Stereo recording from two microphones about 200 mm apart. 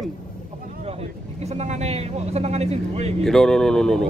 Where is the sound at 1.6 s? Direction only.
35° right (ahead or behind).